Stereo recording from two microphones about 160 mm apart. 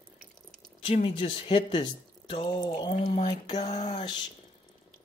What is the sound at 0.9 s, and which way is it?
Speech, 35° left (ahead or behind).